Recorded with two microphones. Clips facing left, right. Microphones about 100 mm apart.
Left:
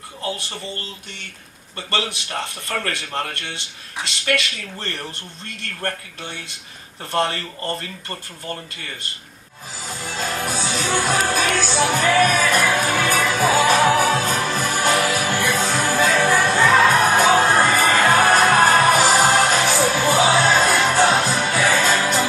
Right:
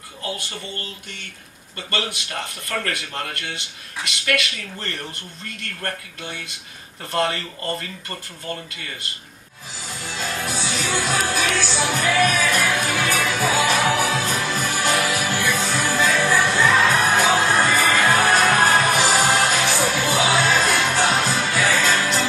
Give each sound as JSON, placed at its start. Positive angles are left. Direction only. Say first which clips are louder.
{"t": 1.8, "sound": "speech", "louder": "left 2 dB", "side_deg": 25}
{"t": 7.1, "sound": "speech", "louder": "left 1 dB", "side_deg": 30}
{"t": 9.8, "sound": "music", "louder": "left 2 dB", "side_deg": 45}
{"t": 21.6, "sound": "music", "louder": "left 2 dB", "side_deg": 20}